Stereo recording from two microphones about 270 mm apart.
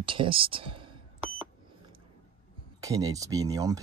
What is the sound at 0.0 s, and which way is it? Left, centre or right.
Speech, centre.